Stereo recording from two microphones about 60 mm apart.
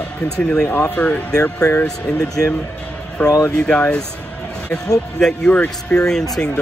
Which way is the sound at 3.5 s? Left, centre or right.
Centre.